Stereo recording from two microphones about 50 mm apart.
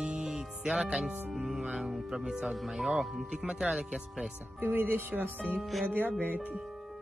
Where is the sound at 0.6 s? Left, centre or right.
Centre.